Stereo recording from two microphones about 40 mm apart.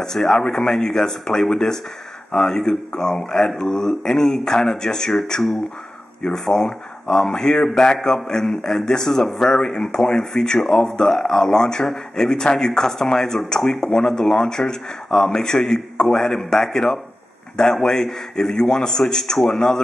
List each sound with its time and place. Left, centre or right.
0.0 s speech: centre